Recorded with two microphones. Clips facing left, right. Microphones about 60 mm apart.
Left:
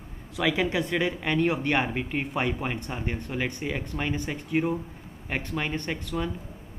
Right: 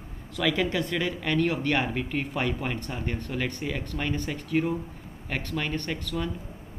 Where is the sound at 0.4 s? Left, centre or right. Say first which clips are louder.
Left 1 dB; centre.